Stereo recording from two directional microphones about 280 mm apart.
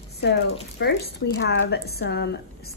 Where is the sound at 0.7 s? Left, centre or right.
Left.